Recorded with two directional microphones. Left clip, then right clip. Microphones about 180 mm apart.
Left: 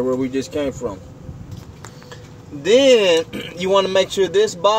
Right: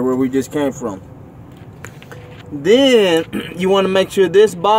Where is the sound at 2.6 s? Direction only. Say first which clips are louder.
Right 1 dB; 40° right (ahead or behind).